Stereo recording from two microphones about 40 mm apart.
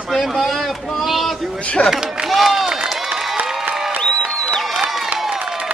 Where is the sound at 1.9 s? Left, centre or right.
Centre.